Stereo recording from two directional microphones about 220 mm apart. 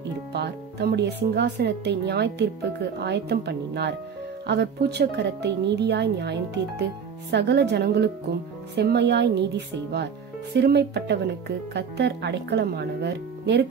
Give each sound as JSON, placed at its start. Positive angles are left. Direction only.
{"t": 0.3, "sound": "speech", "side_deg": -50}